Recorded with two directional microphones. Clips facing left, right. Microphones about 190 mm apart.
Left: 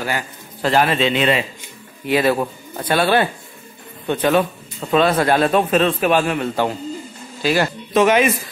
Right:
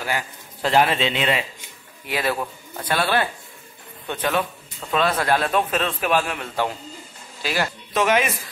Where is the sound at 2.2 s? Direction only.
25° left (ahead or behind).